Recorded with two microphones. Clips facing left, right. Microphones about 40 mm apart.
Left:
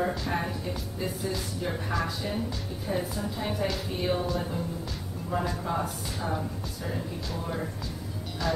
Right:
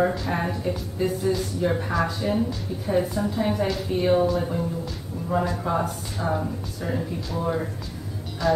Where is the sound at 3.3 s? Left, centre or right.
Centre.